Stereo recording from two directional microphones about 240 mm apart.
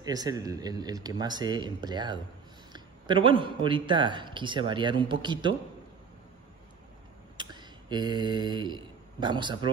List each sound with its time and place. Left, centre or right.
0.0 s speech: centre
7.3 s mantra: centre